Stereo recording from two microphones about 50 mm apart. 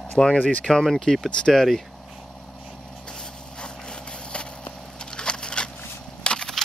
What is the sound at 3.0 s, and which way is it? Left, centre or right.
Vehicle, centre.